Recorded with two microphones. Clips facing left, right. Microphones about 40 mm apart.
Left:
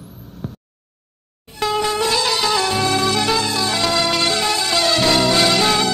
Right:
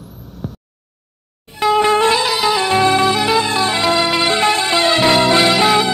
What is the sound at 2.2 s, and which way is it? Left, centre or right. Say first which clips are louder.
Music: right 2 dB; centre.